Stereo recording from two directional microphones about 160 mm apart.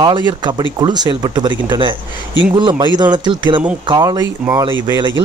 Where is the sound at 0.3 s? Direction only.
30° right (ahead or behind).